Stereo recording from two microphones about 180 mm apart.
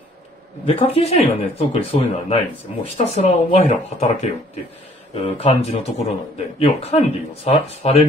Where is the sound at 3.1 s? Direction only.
35° left (ahead or behind).